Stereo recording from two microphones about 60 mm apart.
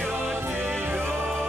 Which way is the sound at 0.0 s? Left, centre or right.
Right.